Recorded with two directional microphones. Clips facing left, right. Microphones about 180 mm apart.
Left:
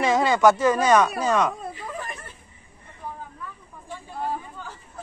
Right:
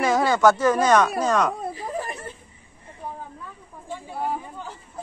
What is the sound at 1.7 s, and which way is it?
Snake, 35° right (ahead or behind).